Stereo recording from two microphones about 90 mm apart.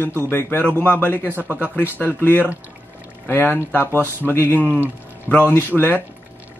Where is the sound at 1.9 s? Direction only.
20° left (ahead or behind).